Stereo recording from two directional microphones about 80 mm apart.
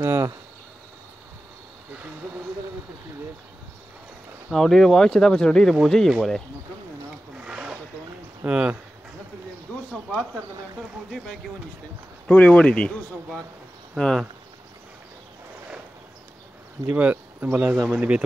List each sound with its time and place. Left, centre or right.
0.0 s cricket: right
4.5 s speech: centre
7.3 s wild animals: centre
8.5 s speech: centre
11.1 s speech: centre
12.3 s speech: centre
13.9 s speech: centre
16.9 s speech: right